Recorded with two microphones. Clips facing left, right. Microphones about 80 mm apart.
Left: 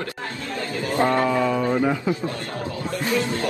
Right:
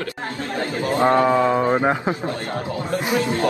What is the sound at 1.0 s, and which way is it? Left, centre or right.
Speech, right.